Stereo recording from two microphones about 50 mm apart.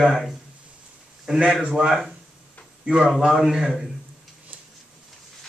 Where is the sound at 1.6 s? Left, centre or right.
Centre.